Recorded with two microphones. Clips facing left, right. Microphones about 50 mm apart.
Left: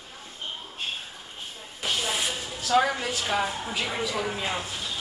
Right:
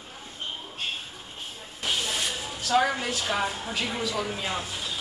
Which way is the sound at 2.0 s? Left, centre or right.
Centre.